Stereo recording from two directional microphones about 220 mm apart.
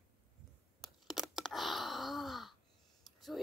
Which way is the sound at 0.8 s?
Centre (ahead or behind).